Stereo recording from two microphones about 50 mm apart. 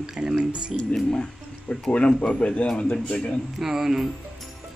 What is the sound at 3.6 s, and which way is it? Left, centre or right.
Speech, centre.